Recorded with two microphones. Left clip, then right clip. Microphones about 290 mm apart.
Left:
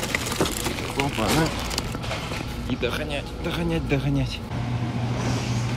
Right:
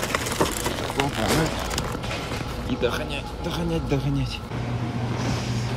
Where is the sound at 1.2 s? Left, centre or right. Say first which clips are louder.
Left 1 dB; centre.